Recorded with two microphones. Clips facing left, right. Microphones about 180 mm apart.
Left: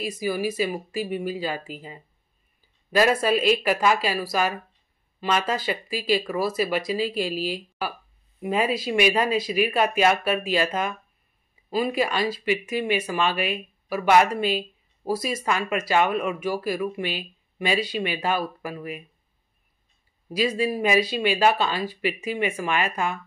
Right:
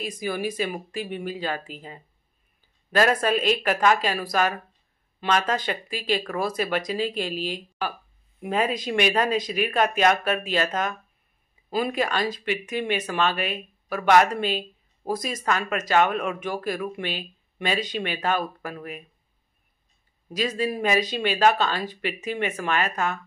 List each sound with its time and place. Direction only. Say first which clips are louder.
0.0 s speech: left 2 dB; 5° left (ahead or behind)
2.9 s speech: left 1 dB; 10° left (ahead or behind)
20.3 s speech: left 2 dB; 10° left (ahead or behind)